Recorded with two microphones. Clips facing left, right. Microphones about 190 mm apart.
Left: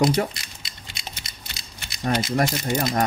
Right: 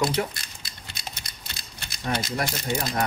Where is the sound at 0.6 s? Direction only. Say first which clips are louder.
Even; 90° left.